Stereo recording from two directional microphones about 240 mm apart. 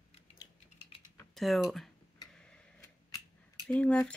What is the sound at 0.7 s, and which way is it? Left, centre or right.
Typing, left.